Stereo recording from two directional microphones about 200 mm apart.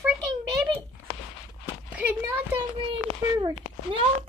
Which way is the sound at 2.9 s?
25° right (ahead or behind).